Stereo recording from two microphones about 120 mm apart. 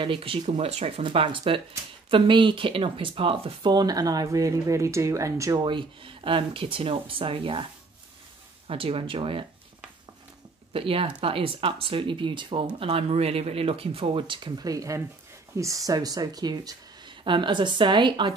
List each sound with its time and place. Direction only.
0.0 s speech: 45° right (ahead or behind)
0.5 s speech: 60° right (ahead or behind)
8.6 s speech: 50° right (ahead or behind)
10.7 s speech: 50° right (ahead or behind)